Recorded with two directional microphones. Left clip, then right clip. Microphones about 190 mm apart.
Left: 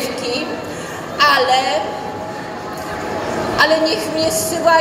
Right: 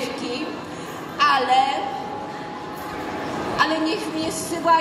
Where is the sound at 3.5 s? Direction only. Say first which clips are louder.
Left 7 dB; 40° left (ahead or behind).